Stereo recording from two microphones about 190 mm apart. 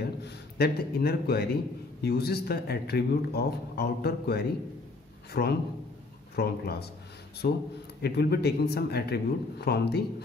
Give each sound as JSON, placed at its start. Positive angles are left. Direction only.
{"t": 0.2, "sound": "a man's voice", "side_deg": 55}